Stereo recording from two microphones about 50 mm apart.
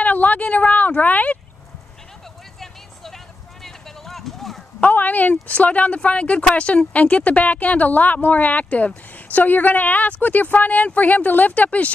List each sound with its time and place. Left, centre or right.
0.0 s speech: left
2.6 s vehicle: centre
3.6 s a sound: centre
4.7 s a woman's voice: left